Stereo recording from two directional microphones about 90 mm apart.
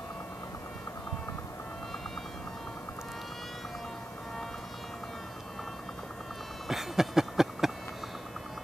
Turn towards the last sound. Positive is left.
turn(degrees=-5)  # may be behind; listen again after turning